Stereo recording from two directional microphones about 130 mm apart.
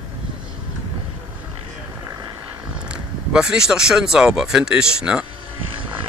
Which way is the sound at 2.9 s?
5° right (ahead or behind).